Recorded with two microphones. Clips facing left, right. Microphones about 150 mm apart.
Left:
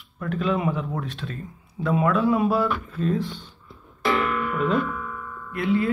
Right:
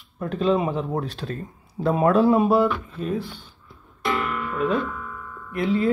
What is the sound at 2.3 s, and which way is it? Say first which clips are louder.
Speech: right 3 dB; 20° right (ahead or behind).